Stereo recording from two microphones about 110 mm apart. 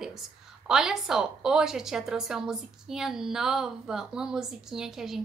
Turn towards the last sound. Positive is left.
turn(degrees=-5)  # may be behind; listen again after turning